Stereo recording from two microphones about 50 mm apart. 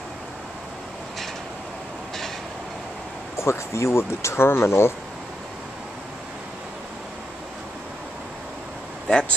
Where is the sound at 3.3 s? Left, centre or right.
Left.